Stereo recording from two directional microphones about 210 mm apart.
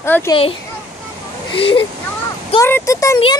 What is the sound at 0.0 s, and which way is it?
Speech, 10° left (ahead or behind).